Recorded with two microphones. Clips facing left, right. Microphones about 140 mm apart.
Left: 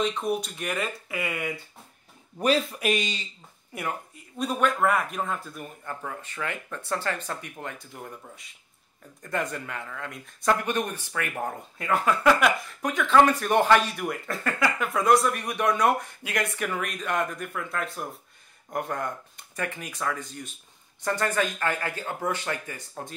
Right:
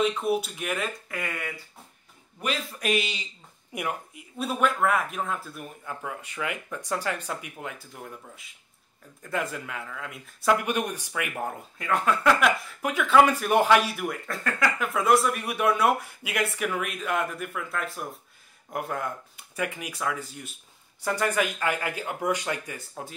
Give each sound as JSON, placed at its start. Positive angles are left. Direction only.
{"t": 0.0, "sound": "speech", "side_deg": -5}
{"t": 2.3, "sound": "a man's voice", "side_deg": 35}
{"t": 2.8, "sound": "speech", "side_deg": -5}
{"t": 11.4, "sound": "speech", "side_deg": 0}